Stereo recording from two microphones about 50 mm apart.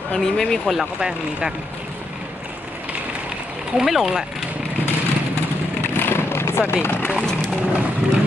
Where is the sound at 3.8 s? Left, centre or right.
Centre.